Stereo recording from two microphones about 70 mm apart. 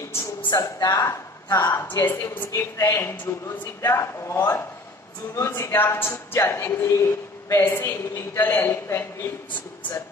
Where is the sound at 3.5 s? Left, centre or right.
Left.